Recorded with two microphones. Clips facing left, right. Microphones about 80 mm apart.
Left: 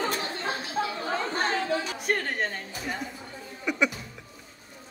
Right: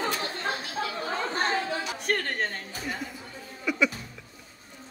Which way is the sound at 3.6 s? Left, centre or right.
Left.